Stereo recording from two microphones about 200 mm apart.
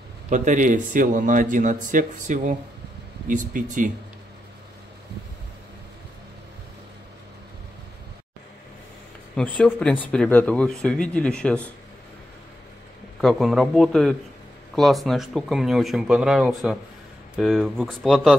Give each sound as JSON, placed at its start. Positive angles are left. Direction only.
{"t": 0.3, "sound": "a man's voice", "side_deg": -40}
{"t": 9.6, "sound": "speech", "side_deg": 5}
{"t": 13.2, "sound": "speech", "side_deg": 0}